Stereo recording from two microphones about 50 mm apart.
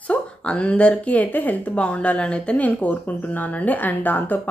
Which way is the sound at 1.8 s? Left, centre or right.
Left.